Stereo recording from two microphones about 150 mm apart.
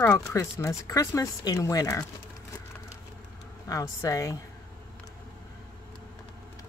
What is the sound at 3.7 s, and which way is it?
Speech, 20° left (ahead or behind).